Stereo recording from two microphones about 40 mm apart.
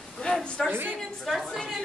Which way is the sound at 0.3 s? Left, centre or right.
Centre.